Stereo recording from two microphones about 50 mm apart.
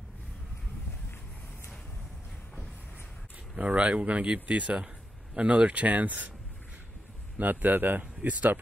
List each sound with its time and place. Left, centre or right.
3.5 s speech: right
7.3 s speech: right